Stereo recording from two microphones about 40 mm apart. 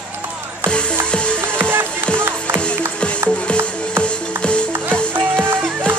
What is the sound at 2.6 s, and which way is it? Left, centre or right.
Music, left.